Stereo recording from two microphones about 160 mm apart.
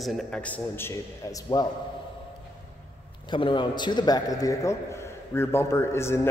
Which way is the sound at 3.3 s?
30° left (ahead or behind).